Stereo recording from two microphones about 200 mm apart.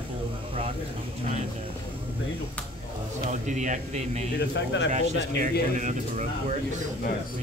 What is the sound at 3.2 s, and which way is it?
Speech, 40° right (ahead or behind).